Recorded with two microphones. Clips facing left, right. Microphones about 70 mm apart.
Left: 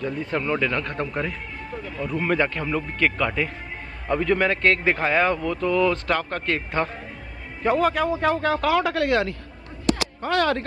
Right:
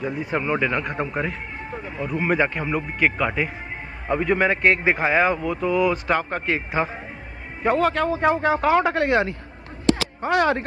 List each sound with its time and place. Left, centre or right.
0.0 s a man's voice: centre
8.1 s speech: right